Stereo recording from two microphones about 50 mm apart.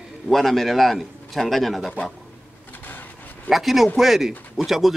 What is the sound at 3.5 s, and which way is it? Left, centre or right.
A man's voice, centre.